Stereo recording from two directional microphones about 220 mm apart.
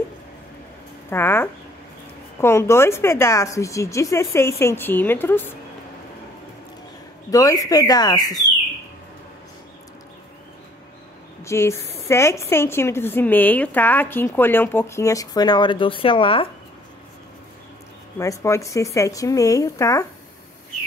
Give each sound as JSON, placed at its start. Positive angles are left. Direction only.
{"t": 1.1, "sound": "a woman's voice", "side_deg": 10}
{"t": 7.2, "sound": "a woman's voice", "side_deg": 15}
{"t": 11.4, "sound": "a woman's voice", "side_deg": 10}
{"t": 18.1, "sound": "a woman's voice", "side_deg": 15}